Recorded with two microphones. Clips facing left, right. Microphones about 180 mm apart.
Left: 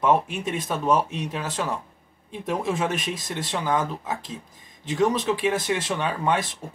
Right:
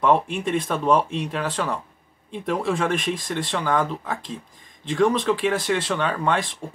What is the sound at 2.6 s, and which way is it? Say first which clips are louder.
Speech: right 3 dB; 20° left (ahead or behind).